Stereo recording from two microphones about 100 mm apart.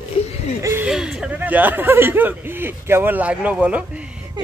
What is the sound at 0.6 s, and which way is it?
Speech, 30° right (ahead or behind).